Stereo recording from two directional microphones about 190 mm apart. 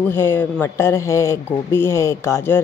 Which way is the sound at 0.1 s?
10° left (ahead or behind).